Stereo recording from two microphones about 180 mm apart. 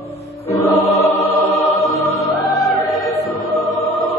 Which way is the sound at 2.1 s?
Centre (ahead or behind).